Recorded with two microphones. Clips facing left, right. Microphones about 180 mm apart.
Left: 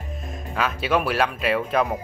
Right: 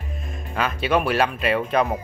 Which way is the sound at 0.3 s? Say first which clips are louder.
Even; centre (ahead or behind).